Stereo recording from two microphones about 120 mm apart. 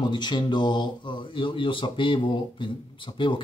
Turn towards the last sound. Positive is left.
turn(degrees=40)  # may be behind; listen again after turning